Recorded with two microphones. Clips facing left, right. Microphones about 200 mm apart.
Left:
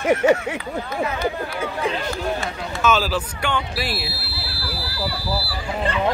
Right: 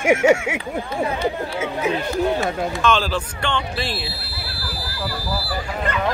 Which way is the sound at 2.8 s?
5° left (ahead or behind).